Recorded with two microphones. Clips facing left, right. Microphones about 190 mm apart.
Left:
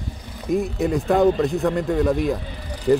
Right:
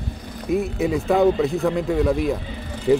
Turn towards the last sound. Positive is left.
turn(degrees=-5)  # may be behind; listen again after turning